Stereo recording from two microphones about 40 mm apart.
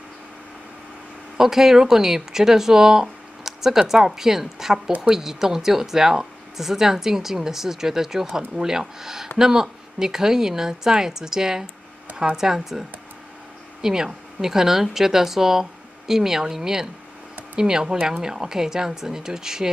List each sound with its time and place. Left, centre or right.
1.4 s speech: centre